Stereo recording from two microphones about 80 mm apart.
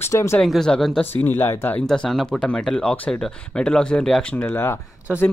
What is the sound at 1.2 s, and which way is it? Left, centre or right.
Speech, left.